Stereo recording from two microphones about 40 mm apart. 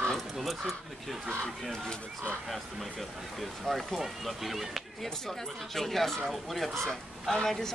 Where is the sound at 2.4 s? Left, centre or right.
Centre.